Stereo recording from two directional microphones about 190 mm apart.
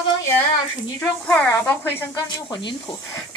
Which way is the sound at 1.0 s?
5° left (ahead or behind).